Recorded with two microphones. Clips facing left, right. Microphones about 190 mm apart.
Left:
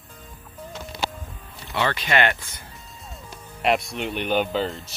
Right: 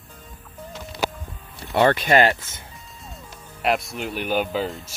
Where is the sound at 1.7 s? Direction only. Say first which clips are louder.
Right 6 dB; 50° right (ahead or behind).